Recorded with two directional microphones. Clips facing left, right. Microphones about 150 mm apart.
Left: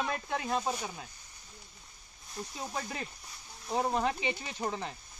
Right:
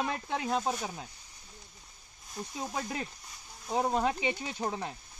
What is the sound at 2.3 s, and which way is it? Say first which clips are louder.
Speech: right 2 dB; 10° right (ahead or behind).